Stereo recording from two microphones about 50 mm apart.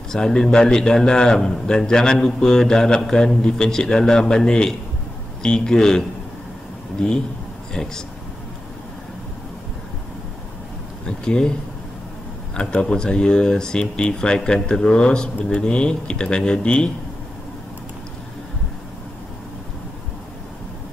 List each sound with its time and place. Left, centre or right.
0.1 s speech: centre
7.7 s speech: centre
11.1 s speech: centre
12.8 s speech: centre